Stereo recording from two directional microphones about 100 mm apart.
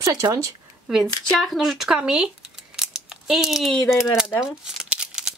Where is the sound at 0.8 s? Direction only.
5° right (ahead or behind).